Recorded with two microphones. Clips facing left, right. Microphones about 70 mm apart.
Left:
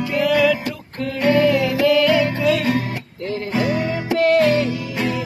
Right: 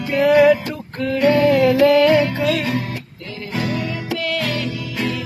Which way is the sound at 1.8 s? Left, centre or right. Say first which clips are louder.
Right 1 dB; right.